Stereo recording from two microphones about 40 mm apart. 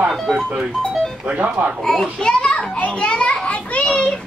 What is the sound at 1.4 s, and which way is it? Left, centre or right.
Speech, right.